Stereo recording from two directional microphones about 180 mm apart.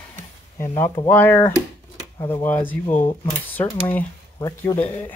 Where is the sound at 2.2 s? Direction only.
25° left (ahead or behind).